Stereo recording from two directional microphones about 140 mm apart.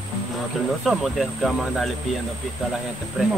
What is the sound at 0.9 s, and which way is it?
Speech, centre (ahead or behind).